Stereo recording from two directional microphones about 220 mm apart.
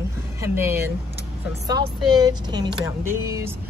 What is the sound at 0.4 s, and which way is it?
Speech, 10° right (ahead or behind).